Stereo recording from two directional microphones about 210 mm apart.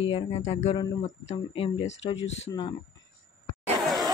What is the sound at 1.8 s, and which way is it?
Speech, 60° left (ahead or behind).